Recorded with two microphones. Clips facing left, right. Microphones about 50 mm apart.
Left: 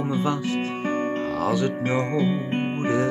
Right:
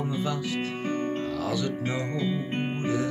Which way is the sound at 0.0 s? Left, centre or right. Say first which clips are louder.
Left 5 dB; left.